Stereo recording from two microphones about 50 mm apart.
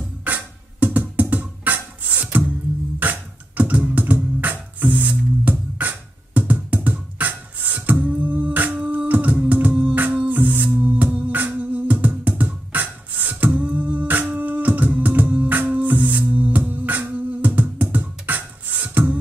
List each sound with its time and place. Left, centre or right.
0.2 s music: right